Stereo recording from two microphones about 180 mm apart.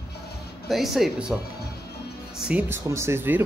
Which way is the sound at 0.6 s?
Centre (ahead or behind).